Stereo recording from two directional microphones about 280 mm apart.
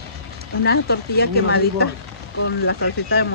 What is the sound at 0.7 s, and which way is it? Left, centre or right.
Speech, left.